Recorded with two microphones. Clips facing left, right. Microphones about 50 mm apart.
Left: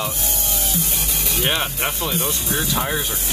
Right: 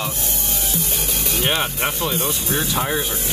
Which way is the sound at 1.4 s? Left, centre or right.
Centre.